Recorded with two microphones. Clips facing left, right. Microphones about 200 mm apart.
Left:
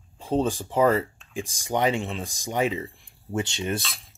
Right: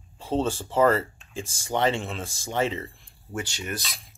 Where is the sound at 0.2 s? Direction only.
15° left (ahead or behind).